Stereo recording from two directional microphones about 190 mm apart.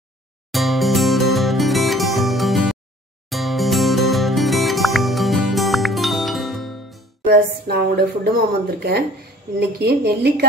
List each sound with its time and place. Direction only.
0.5 s music: centre (ahead or behind)
7.3 s a woman's voice: 55° right (ahead or behind)